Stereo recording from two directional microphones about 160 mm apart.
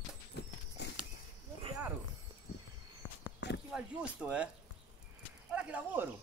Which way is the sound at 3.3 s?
90° left.